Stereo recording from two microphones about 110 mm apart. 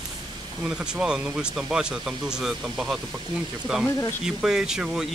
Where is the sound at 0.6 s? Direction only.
5° right (ahead or behind).